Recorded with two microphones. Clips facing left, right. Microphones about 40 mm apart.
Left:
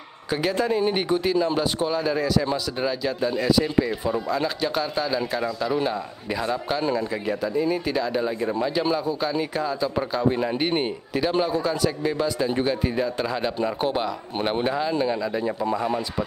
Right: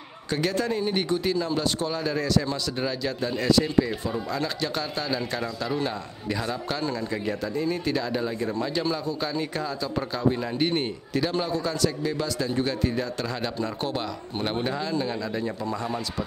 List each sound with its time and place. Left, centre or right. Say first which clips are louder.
0.3 s speech: left 3 dB; centre
7.2 s speech: left 4 dB; centre